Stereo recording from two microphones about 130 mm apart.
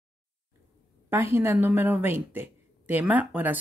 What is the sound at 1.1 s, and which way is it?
Speech, 20° right (ahead or behind).